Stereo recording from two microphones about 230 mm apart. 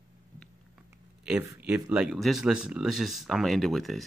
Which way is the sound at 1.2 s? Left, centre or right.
Centre.